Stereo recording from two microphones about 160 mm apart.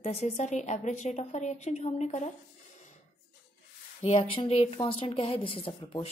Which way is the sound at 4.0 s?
40° left (ahead or behind).